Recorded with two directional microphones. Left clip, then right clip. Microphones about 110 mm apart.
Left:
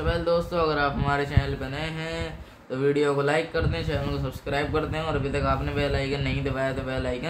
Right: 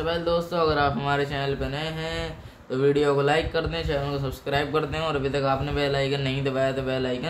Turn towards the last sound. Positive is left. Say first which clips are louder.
# right 3 dB
turn(degrees=-35)  # may be behind; listen again after turning